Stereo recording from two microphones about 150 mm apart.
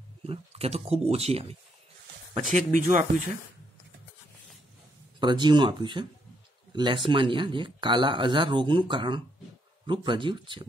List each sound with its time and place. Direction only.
0.2 s speech: 40° right (ahead or behind)
2.5 s speech: 55° right (ahead or behind)
5.2 s speech: 30° right (ahead or behind)